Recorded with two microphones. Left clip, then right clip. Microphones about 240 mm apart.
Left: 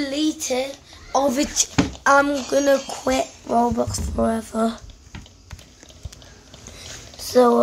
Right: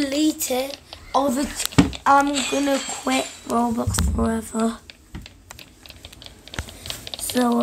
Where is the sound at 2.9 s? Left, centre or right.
Centre.